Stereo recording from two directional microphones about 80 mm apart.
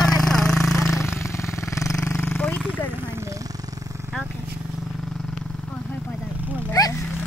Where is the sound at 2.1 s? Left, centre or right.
Centre.